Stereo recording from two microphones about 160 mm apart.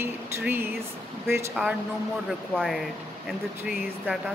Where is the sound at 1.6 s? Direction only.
5° left (ahead or behind).